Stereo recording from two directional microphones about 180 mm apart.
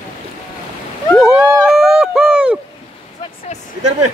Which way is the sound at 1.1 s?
Centre (ahead or behind).